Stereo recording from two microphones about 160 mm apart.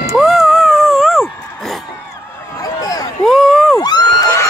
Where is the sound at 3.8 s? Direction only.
25° left (ahead or behind).